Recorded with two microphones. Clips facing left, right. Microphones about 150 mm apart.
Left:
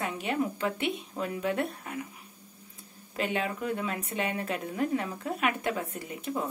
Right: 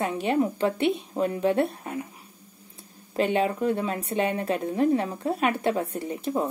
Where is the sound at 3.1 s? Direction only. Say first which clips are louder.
Right 7 dB; 35° right (ahead or behind).